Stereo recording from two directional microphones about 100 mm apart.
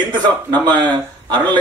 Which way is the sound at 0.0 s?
50° right (ahead or behind).